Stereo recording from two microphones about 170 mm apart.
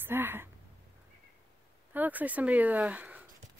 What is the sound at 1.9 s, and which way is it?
A woman's voice, 10° right (ahead or behind).